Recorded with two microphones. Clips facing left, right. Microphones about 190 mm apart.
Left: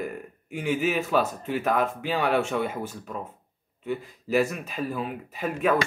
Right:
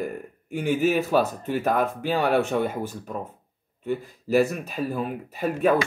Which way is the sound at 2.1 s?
45° right (ahead or behind).